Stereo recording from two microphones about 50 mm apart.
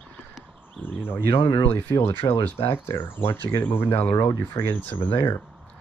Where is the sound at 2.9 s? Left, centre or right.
Left.